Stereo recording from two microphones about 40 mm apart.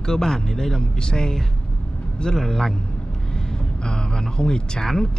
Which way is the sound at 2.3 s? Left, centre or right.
Centre.